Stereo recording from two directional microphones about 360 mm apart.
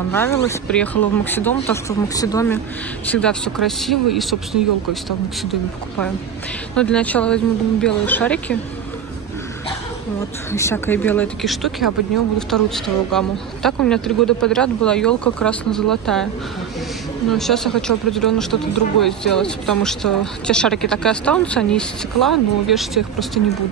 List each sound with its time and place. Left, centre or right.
0.1 s speech: centre
10.5 s speech: centre
17.3 s speech: centre